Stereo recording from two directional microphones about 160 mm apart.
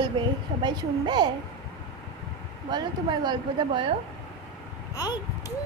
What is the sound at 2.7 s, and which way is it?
Speech, 25° right (ahead or behind).